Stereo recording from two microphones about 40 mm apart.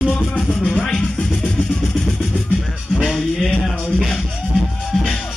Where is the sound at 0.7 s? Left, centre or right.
Centre.